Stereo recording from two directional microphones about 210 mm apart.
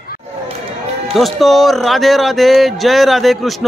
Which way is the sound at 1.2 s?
Centre (ahead or behind).